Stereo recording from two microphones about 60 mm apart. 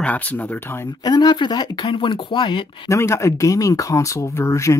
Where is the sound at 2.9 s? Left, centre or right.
Left.